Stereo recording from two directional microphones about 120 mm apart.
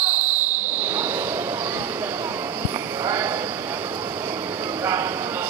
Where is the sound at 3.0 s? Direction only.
25° right (ahead or behind).